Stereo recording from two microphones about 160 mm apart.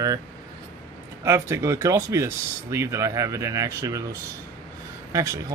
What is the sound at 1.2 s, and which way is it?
Speech, 20° right (ahead or behind).